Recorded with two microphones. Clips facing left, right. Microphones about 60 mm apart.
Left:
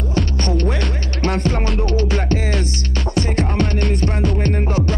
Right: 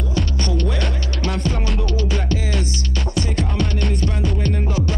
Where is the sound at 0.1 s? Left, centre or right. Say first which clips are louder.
Left 4 dB; left.